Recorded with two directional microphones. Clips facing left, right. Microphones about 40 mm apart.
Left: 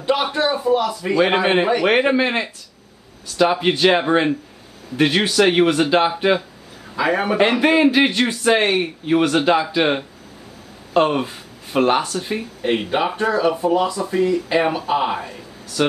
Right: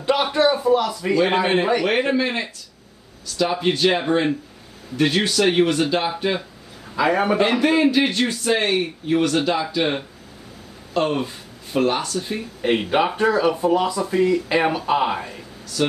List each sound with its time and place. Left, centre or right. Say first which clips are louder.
0.0 s a sound: right 1 dB; centre
1.1 s speech: left 2 dB; centre
3.6 s speech: left 3 dB; left
7.0 s a man's voice: even; centre
7.6 s speech: left 3 dB; left
12.6 s speech: right 1 dB; centre